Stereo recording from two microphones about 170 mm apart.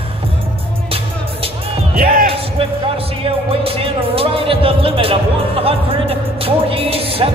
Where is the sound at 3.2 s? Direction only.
35° right (ahead or behind).